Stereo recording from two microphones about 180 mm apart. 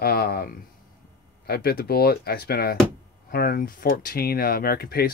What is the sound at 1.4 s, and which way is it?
Speech, 60° left (ahead or behind).